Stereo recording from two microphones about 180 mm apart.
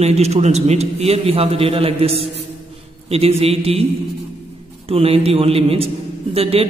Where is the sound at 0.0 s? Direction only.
35° right (ahead or behind).